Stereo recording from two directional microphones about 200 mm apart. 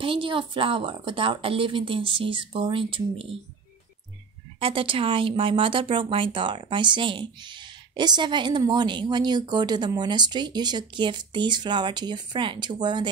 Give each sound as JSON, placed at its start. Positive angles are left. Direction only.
{"t": 0.0, "sound": "a woman's voice", "side_deg": -25}
{"t": 4.6, "sound": "a woman's voice", "side_deg": -25}